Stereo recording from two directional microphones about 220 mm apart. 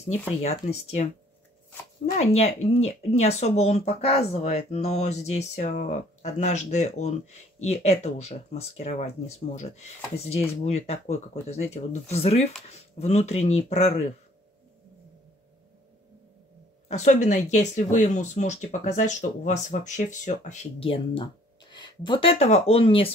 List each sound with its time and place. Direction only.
0.4 s speech: 30° left (ahead or behind)
2.1 s speech: 30° left (ahead or behind)
16.9 s speech: 30° left (ahead or behind)